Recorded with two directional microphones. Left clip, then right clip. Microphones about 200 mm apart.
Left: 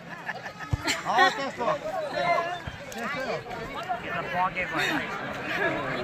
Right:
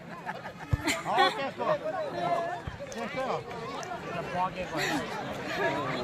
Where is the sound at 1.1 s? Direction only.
40° left (ahead or behind).